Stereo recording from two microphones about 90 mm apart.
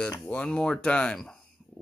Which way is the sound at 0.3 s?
15° left (ahead or behind).